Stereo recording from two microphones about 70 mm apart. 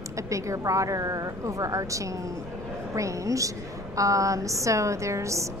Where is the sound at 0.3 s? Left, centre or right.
Right.